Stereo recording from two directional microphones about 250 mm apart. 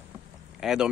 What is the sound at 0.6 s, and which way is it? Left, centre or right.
Speech, centre.